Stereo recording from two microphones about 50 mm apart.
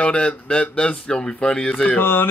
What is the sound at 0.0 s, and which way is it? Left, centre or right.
Speech, centre.